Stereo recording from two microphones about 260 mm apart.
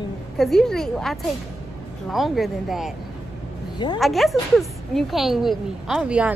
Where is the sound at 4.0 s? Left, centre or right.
Centre.